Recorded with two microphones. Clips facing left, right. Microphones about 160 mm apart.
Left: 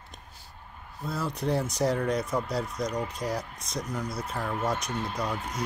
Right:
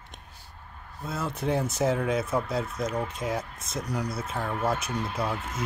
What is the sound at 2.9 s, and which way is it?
Speech, 25° right (ahead or behind).